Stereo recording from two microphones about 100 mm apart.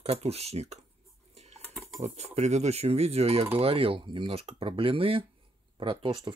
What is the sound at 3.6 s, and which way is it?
Speech, 70° right (ahead or behind).